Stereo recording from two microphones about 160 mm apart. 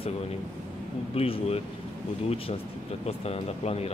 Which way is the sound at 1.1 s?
40° left (ahead or behind).